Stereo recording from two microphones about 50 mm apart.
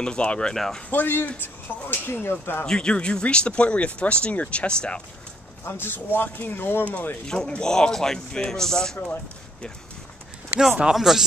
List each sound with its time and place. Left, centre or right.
0.0 s speech: left
0.8 s speech: left
2.6 s speech: centre
5.7 s speech: left
6.9 s speech: left
7.2 s speech: centre
8.9 s speech: left
10.9 s speech: centre